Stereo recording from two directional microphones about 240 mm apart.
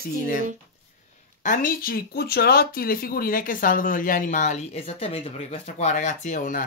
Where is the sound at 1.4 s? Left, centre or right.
Left.